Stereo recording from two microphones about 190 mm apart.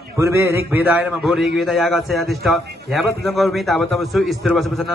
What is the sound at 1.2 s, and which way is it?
A man's voice, centre (ahead or behind).